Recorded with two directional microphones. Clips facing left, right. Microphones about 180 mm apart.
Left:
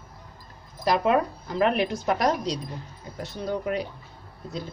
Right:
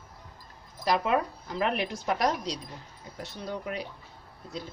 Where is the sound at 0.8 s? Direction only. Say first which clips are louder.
Left 4 dB; 50° left (ahead or behind).